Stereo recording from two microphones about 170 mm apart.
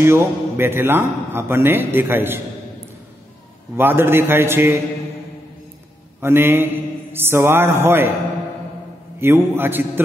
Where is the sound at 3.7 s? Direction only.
15° right (ahead or behind).